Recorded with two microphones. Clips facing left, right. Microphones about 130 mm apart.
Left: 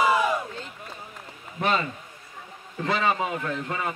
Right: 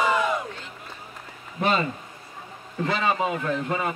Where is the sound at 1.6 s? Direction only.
30° right (ahead or behind).